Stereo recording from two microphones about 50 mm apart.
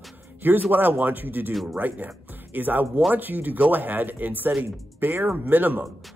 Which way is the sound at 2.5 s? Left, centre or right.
Right.